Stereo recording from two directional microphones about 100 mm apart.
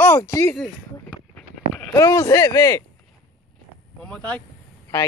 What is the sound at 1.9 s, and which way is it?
Speech, 35° left (ahead or behind).